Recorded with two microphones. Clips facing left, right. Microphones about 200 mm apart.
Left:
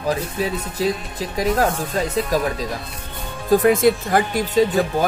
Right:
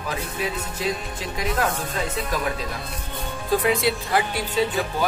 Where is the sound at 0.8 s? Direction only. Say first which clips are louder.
Left 6 dB; 40° left (ahead or behind).